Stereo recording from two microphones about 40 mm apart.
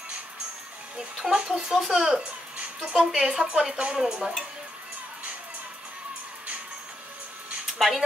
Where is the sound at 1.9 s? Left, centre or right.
Centre.